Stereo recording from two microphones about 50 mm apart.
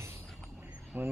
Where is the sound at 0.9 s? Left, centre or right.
Right.